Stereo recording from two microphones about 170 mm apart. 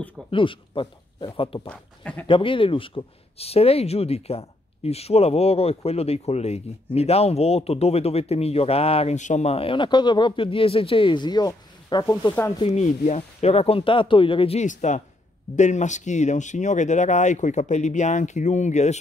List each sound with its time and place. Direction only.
0.3 s speech: 30° left (ahead or behind)
1.7 s speech: 5° left (ahead or behind)
2.2 s speech: 30° left (ahead or behind)
12.5 s speech: 40° left (ahead or behind)